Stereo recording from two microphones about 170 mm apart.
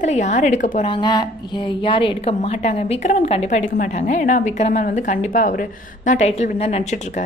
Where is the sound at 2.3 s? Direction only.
45° left (ahead or behind).